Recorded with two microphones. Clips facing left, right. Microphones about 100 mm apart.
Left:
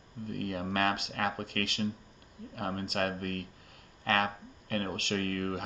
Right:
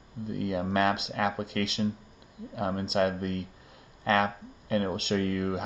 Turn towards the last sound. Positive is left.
turn(degrees=-20)  # may be behind; listen again after turning